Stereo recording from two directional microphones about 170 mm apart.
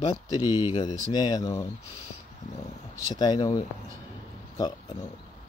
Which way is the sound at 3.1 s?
25° left (ahead or behind).